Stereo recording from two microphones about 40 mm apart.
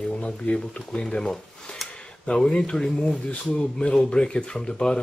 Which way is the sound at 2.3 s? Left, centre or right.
Left.